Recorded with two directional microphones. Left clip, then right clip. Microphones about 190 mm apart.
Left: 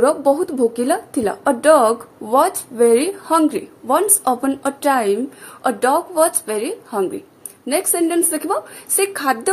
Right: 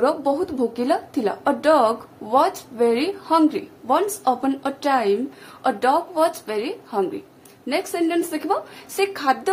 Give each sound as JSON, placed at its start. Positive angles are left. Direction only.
{"t": 0.0, "sound": "a woman's voice", "side_deg": 15}